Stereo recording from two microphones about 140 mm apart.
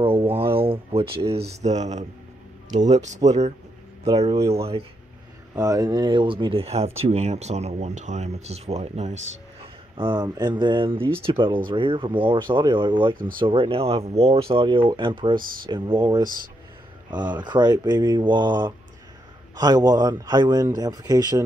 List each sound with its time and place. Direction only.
0.0 s a sound: 40° right (ahead or behind)
0.6 s speech: 40° right (ahead or behind)
4.4 s a man's voice: 20° right (ahead or behind); by 9.1 s 50° right (ahead or behind)
9.9 s speech: 35° right (ahead or behind)
17.3 s a man's voice: 30° right (ahead or behind)